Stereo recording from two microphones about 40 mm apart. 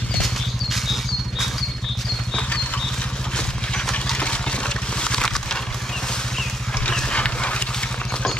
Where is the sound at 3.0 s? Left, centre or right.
Left.